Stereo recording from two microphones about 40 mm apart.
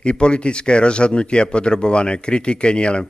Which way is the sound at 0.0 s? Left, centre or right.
Left.